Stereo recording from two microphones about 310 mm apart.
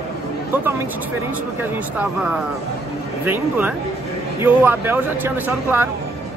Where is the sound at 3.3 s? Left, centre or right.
Centre.